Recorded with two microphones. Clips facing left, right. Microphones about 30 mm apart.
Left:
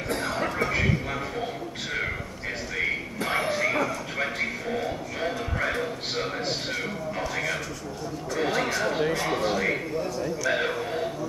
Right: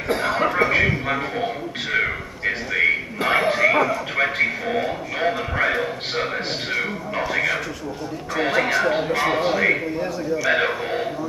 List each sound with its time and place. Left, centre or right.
0.1 s a man's voice: right